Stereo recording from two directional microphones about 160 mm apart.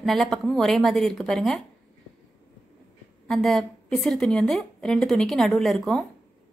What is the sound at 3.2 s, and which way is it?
A woman's voice, centre (ahead or behind).